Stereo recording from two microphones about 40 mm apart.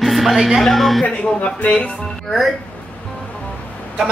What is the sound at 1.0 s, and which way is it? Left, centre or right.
Speech, left.